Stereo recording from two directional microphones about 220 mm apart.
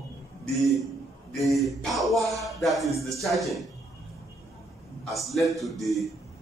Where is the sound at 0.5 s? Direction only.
Centre (ahead or behind).